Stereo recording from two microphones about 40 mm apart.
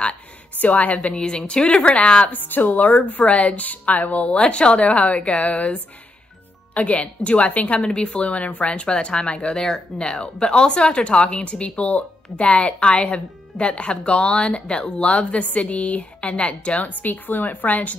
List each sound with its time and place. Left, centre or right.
0.6 s speech: left
0.9 s a woman's voice: left
2.3 s speech: left
7.8 s a woman's voice: left